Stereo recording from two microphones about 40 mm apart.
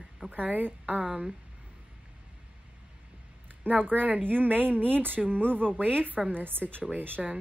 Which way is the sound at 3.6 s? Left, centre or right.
Right.